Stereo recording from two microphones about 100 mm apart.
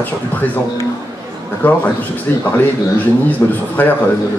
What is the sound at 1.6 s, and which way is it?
Speech, 15° left (ahead or behind).